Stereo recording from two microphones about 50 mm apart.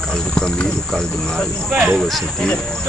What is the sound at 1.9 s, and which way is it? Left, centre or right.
Speech, centre.